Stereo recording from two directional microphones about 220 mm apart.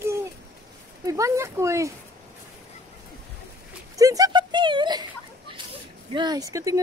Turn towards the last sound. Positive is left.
turn(degrees=-15)  # may be behind; listen again after turning